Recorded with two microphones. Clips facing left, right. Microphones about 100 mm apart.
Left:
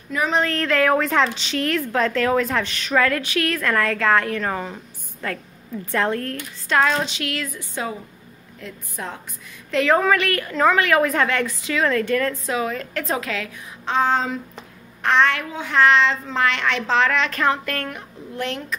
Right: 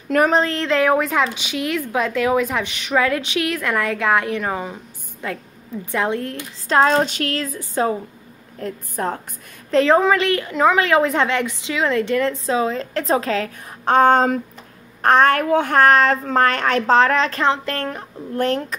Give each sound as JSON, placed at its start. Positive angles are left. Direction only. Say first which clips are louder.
{"t": 0.1, "sound": "speech", "louder": "right 7 dB", "side_deg": -65}
{"t": 0.5, "sound": "a woman's voice", "louder": "right 1 dB", "side_deg": -20}
{"t": 6.7, "sound": "a woman's voice", "louder": "right 4 dB", "side_deg": -35}
{"t": 9.7, "sound": "a woman's voice", "louder": "right 3 dB", "side_deg": -30}
{"t": 13.8, "sound": "a woman's voice", "louder": "right 7 dB", "side_deg": -55}
{"t": 18.3, "sound": "a woman's voice", "louder": "right 7 dB", "side_deg": -45}